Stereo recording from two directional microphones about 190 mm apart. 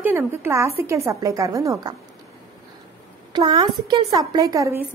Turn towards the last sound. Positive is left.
turn(degrees=-15)  # may be behind; listen again after turning